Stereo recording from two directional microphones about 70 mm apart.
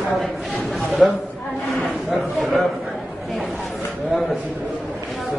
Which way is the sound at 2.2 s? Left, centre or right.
Centre.